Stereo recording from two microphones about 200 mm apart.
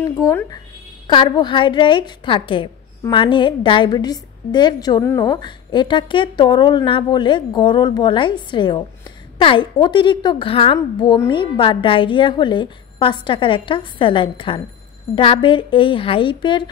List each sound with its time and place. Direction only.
0.0 s a woman's voice: 15° left (ahead or behind)